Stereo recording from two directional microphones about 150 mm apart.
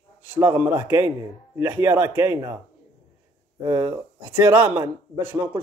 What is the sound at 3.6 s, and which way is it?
Speech, 20° right (ahead or behind).